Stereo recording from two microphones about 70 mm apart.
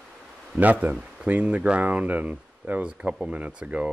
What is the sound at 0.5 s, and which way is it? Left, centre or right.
Speech, right.